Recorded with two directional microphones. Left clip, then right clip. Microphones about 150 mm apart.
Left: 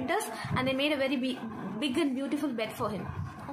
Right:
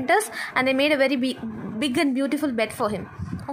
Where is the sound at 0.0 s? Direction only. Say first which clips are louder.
Right 10 dB; 85° right.